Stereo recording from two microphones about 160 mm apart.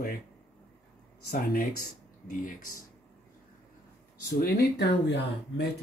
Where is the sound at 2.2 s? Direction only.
55° left (ahead or behind).